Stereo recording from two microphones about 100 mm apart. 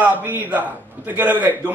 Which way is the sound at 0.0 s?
15° right (ahead or behind).